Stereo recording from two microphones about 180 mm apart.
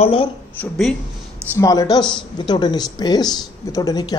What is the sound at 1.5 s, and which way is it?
Speech, 20° left (ahead or behind).